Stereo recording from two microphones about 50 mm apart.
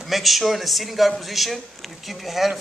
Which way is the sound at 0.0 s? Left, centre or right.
Centre.